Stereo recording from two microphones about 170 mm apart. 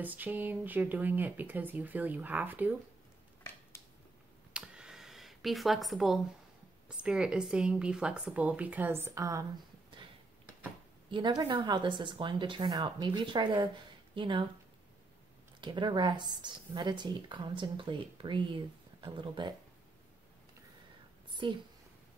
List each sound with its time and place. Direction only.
0.0 s a woman's voice: 10° right (ahead or behind)
4.6 s a sound: 5° right (ahead or behind)
6.9 s a woman's voice: 5° right (ahead or behind)
11.1 s speech: 25° right (ahead or behind)
15.6 s speech: 30° right (ahead or behind)
21.3 s a sound: 30° right (ahead or behind)